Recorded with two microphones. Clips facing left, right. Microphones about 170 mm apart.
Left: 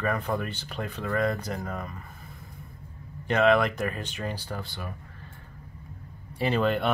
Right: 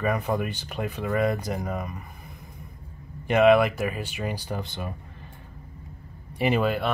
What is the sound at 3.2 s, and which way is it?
Speech, 15° right (ahead or behind).